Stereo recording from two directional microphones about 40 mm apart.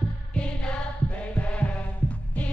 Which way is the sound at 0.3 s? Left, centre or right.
Left.